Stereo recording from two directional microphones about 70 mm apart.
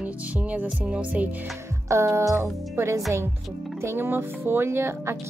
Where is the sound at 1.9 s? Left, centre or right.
Right.